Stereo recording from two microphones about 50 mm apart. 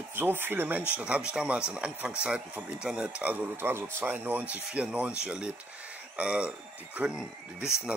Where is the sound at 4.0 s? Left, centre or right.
Right.